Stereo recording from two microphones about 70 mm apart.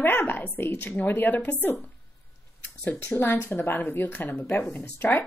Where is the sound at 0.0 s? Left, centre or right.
Left.